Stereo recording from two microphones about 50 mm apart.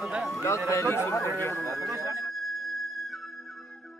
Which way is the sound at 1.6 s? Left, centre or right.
Right.